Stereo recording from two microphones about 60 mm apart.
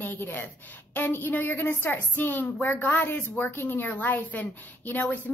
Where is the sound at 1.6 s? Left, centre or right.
Left.